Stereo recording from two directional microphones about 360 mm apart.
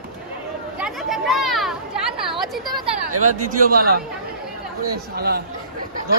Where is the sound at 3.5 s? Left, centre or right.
Right.